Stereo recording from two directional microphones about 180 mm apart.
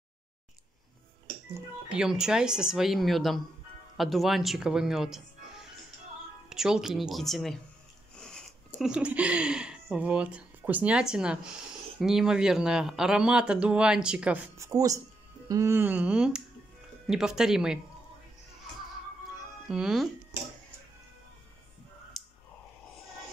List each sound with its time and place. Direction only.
1.9 s speech: 5° right (ahead or behind)
6.5 s speech: 5° right (ahead or behind)
14.7 s speech: 20° right (ahead or behind)
19.7 s speech: centre (ahead or behind)
22.2 s clicking: centre (ahead or behind)